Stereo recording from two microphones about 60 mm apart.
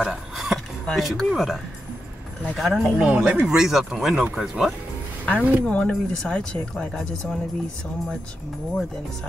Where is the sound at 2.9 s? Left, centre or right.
Centre.